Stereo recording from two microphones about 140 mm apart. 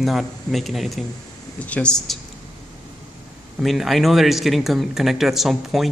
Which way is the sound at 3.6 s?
Centre (ahead or behind).